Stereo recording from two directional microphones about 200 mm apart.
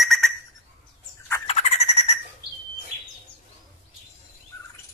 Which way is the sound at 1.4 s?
35° left (ahead or behind).